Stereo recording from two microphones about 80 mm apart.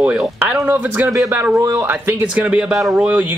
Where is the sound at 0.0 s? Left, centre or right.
Centre.